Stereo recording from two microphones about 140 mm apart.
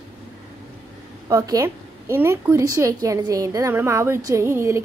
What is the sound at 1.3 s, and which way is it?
A woman's voice, 25° right (ahead or behind).